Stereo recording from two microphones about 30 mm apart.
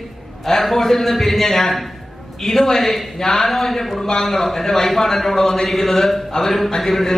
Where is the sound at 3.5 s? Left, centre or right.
Centre.